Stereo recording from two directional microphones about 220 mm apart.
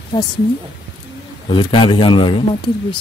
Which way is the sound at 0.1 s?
15° left (ahead or behind).